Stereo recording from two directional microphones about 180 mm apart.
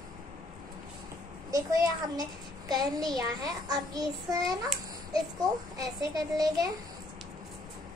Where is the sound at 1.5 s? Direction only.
20° right (ahead or behind).